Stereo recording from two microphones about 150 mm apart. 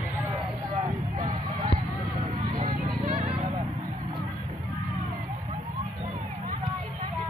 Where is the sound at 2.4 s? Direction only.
50° right (ahead or behind).